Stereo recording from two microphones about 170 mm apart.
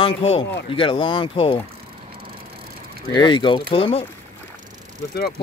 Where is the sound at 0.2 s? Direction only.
35° left (ahead or behind).